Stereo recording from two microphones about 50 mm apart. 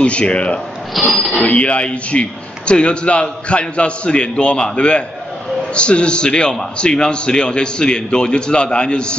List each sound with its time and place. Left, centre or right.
0.0 s a man's voice: left
1.0 s speech: centre
1.3 s a man's voice: left